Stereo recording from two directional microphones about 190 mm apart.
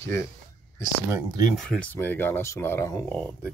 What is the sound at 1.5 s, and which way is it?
Speech, 5° left (ahead or behind).